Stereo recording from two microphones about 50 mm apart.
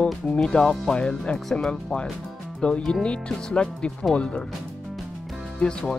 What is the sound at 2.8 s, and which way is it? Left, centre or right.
Speech, centre.